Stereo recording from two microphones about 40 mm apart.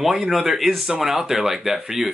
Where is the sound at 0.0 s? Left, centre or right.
Centre.